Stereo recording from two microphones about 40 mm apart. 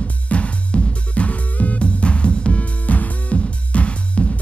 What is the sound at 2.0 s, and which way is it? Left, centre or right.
Music, left.